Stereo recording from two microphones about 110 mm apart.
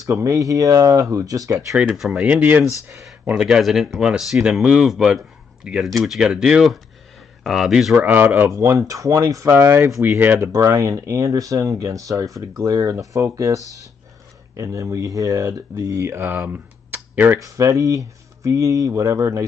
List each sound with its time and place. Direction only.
0.0 s speech: 30° right (ahead or behind)
1.7 s speech: 5° right (ahead or behind)
2.2 s speech: 20° right (ahead or behind)
3.3 s speech: 5° right (ahead or behind)
8.5 s speech: 25° right (ahead or behind)
10.5 s speech: 30° right (ahead or behind); by 17.4 s 15° right (ahead or behind)
17.4 s speech: 30° right (ahead or behind)